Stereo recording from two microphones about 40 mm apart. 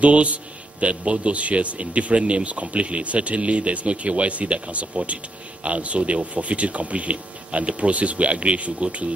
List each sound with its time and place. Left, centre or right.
0.0 s a man's voice: right